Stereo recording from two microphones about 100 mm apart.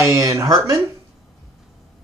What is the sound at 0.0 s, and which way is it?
Speech, 30° right (ahead or behind).